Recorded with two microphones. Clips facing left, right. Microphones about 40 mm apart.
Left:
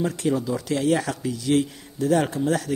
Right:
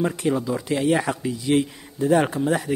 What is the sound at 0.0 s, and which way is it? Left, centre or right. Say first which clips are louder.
Speech: right 1 dB; centre.